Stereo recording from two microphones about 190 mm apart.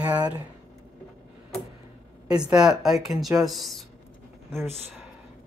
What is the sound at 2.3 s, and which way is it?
Speech, 5° right (ahead or behind).